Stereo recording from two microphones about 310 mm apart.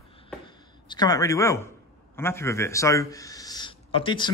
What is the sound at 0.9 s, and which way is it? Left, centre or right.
A man's voice, centre.